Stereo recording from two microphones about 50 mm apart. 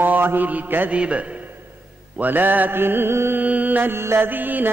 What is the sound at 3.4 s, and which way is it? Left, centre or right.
Music, right.